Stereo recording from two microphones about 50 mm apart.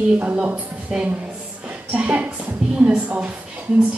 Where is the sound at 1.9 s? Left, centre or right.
Right.